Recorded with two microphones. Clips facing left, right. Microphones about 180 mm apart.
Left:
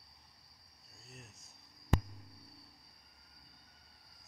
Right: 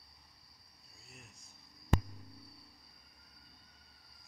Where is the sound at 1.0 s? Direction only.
40° left (ahead or behind).